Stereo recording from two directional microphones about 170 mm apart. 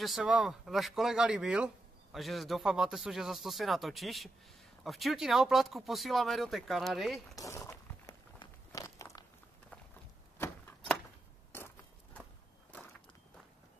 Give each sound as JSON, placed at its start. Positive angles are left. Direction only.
{"t": 0.0, "sound": "speech", "side_deg": 0}
{"t": 7.3, "sound": "a sound", "side_deg": 20}
{"t": 11.5, "sound": "biting", "side_deg": 10}